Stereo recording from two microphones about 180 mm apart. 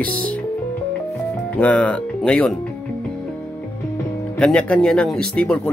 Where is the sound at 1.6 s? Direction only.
5° left (ahead or behind).